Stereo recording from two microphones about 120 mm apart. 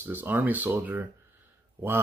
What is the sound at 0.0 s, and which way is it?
Speech, 15° right (ahead or behind).